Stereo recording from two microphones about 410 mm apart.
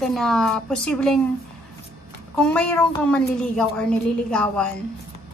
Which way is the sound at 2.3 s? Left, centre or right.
Centre.